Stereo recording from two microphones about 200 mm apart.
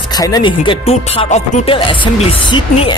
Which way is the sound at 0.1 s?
20° left (ahead or behind).